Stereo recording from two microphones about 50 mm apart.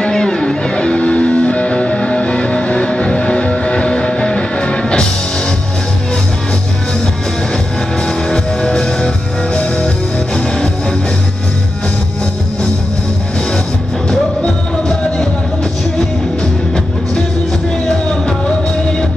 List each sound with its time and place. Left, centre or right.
0.0 s music: centre
8.3 s music: centre